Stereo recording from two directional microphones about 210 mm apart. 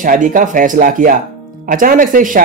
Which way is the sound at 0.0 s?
40° right (ahead or behind).